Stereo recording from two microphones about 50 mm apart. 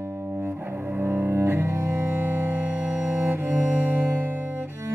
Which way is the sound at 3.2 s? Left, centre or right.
Right.